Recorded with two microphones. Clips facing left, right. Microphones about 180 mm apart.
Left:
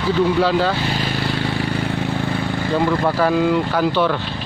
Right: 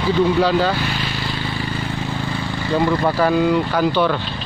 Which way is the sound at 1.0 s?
60° left (ahead or behind).